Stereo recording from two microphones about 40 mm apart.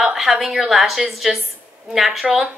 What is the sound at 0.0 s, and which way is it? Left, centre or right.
A woman's voice, centre.